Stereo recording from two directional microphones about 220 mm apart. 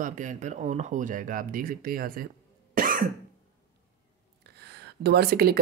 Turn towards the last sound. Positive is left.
turn(degrees=-45)  # may be behind; listen again after turning